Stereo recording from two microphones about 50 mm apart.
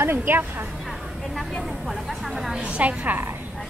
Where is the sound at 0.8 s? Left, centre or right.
Centre.